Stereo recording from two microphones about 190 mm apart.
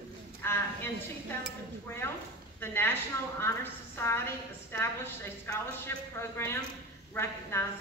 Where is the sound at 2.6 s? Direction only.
10° left (ahead or behind).